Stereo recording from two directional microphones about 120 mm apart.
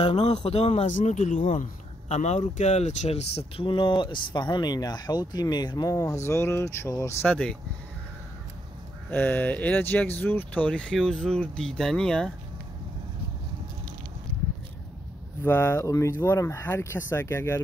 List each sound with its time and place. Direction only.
0.1 s speech: 65° left (ahead or behind); by 7.2 s 25° left (ahead or behind)
7.2 s speech: 10° left (ahead or behind)
9.1 s speech: 15° left (ahead or behind)
15.4 s speech: 20° left (ahead or behind)